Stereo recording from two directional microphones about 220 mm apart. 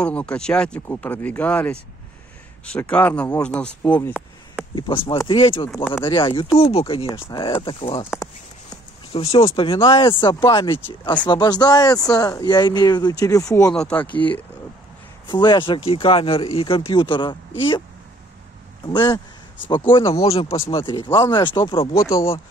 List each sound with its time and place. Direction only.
0.0 s speech: 5° left (ahead or behind)
4.7 s speech: 20° left (ahead or behind)
9.1 s speech: 25° left (ahead or behind); by 14.4 s 5° left (ahead or behind)
15.2 s speech: 20° left (ahead or behind)
18.9 s speech: 20° left (ahead or behind)